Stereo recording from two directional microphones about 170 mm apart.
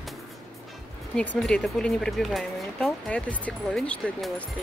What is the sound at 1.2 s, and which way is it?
Speech, 5° left (ahead or behind).